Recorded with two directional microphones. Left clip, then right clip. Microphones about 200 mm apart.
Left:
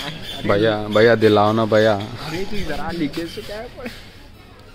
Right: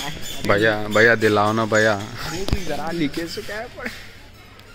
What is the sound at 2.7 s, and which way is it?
Speech, 40° right (ahead or behind).